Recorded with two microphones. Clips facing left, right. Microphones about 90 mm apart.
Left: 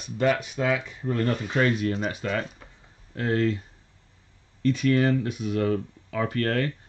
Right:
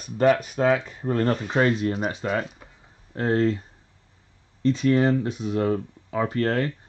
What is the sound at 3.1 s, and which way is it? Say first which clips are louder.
Speech: right 3 dB; 30° right (ahead or behind).